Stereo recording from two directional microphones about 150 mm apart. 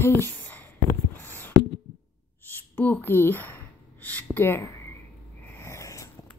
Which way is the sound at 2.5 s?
15° left (ahead or behind).